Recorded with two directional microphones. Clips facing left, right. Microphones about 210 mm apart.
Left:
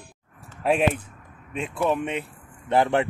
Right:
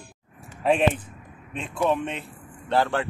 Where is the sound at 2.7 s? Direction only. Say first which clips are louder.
Left 3 dB; 20° left (ahead or behind).